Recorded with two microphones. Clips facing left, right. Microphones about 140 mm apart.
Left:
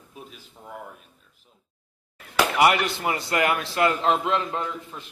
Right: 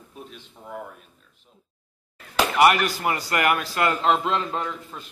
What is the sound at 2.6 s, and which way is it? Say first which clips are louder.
A man's voice: right 3 dB; 20° left (ahead or behind).